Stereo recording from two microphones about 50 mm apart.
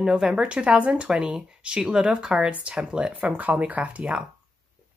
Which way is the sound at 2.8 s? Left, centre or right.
Centre.